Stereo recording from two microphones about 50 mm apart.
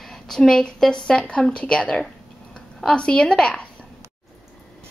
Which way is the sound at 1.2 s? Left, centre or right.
Left.